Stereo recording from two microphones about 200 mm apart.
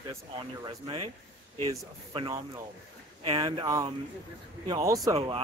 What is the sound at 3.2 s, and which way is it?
Speech, 25° right (ahead or behind).